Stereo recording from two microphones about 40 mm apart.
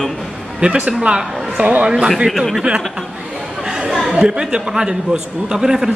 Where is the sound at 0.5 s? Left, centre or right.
Right.